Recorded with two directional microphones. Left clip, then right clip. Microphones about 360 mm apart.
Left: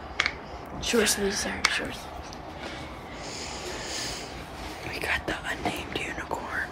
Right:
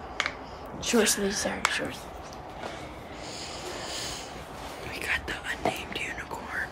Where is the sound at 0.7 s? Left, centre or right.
Right.